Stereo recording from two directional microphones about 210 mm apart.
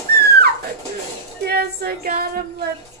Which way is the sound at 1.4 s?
50° right (ahead or behind).